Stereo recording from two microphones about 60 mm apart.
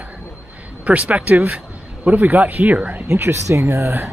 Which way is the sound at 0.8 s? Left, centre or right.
Right.